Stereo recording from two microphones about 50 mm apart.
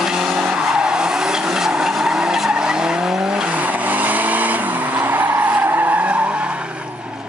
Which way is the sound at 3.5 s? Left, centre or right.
Right.